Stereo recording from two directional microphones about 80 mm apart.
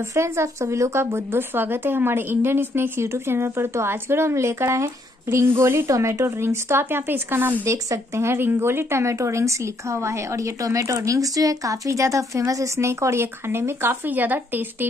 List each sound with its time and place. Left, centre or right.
0.1 s speech: right
7.6 s speech: right